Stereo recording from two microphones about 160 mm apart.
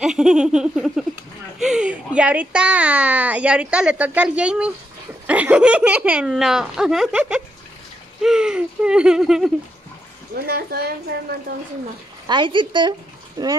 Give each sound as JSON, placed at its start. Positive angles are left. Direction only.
{"t": 0.0, "sound": "speech", "side_deg": -5}
{"t": 10.3, "sound": "a woman's voice", "side_deg": -75}
{"t": 12.3, "sound": "speech", "side_deg": -30}